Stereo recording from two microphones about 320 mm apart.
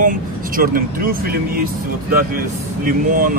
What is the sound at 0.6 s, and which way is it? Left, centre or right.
Speech, right.